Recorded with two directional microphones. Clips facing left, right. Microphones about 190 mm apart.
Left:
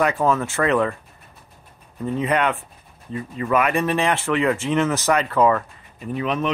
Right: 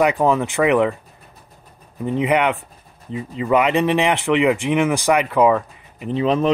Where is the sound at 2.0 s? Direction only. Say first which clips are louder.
Right 3 dB; 15° right (ahead or behind).